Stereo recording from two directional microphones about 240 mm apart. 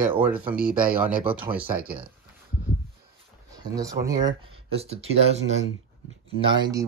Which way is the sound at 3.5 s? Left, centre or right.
Centre.